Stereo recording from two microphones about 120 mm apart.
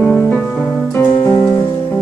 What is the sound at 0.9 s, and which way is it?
Music, 20° left (ahead or behind).